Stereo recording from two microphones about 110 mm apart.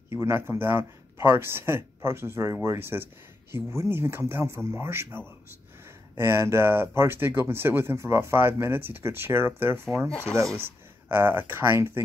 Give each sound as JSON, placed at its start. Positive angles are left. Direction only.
{"t": 0.1, "sound": "speech", "side_deg": -25}
{"t": 9.8, "sound": "speech", "side_deg": 0}
{"t": 10.3, "sound": "speech", "side_deg": -30}
{"t": 11.1, "sound": "speech", "side_deg": -20}